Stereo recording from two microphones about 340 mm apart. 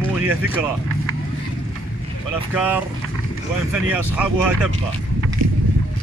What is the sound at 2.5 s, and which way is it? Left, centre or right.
Speech, centre.